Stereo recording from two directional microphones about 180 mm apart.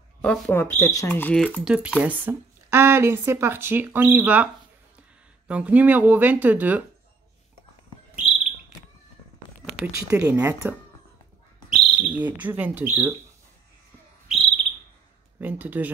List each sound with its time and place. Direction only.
0.2 s speech: 10° left (ahead or behind); by 4.5 s 10° right (ahead or behind)
5.5 s speech: 10° right (ahead or behind)
9.9 s speech: 10° right (ahead or behind)
14.3 s whistle: centre (ahead or behind)
15.4 s speech: 10° right (ahead or behind)